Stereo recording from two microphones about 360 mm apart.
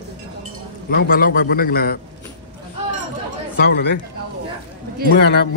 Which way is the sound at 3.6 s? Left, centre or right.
Left.